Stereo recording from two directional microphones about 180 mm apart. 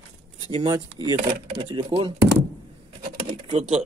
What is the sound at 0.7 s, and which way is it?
Speech, 20° right (ahead or behind).